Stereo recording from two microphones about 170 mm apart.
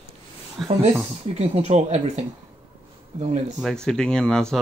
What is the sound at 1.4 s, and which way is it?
Speech, 40° right (ahead or behind).